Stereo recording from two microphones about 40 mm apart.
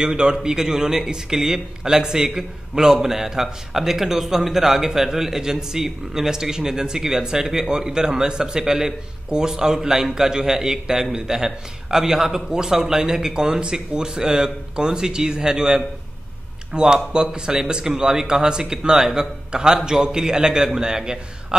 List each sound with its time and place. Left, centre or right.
0.0 s a man's voice: right